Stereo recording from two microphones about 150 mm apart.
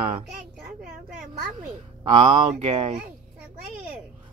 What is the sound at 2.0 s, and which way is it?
Speech, 35° right (ahead or behind).